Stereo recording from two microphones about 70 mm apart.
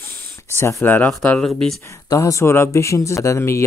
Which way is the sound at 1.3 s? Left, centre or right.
Centre.